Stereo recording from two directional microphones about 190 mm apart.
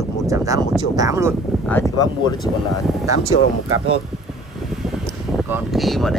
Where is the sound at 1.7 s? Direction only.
20° left (ahead or behind).